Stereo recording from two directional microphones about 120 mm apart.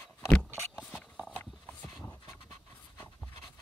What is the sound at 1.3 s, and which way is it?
Horse, 10° left (ahead or behind).